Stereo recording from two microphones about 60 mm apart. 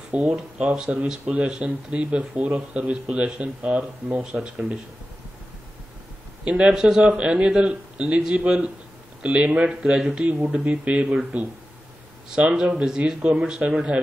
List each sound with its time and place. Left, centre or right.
0.1 s speech: right
6.4 s speech: centre
12.5 s speech: centre